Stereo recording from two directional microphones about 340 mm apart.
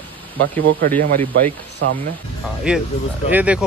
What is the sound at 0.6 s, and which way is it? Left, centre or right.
Speech, right.